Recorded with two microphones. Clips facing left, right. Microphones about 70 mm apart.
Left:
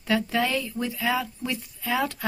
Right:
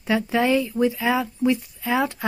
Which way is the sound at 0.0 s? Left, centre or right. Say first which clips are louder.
Right 3 dB; centre.